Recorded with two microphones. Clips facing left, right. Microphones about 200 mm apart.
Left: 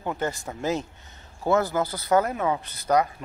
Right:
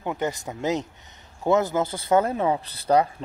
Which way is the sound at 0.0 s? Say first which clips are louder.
Right 1 dB; 15° right (ahead or behind).